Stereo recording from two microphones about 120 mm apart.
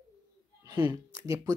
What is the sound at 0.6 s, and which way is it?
Speech, 35° right (ahead or behind).